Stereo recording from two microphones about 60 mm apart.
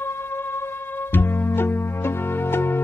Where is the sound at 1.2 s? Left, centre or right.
Left.